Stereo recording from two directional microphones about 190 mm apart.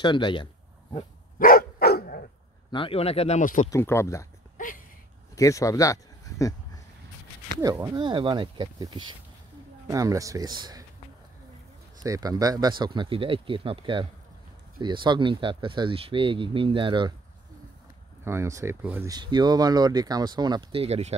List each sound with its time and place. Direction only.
0.0 s a man's voice: 25° left (ahead or behind)
0.9 s dog: 50° left (ahead or behind)
2.7 s speech: 30° left (ahead or behind)
3.7 s speech: 15° left (ahead or behind)
4.6 s a sound: 45° left (ahead or behind)
5.3 s a sound: 15° left (ahead or behind)
7.6 s speech: 15° right (ahead or behind)
12.0 s speech: 20° right (ahead or behind)
18.2 s speech: 15° right (ahead or behind); by 21.1 s 35° right (ahead or behind)